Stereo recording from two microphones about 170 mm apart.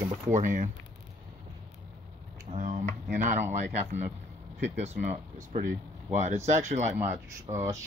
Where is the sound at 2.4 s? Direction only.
45° right (ahead or behind).